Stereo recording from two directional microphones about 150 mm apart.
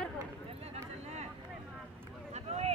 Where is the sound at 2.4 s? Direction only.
45° right (ahead or behind).